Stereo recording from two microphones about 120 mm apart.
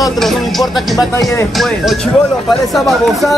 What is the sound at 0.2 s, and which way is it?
Speech, centre (ahead or behind).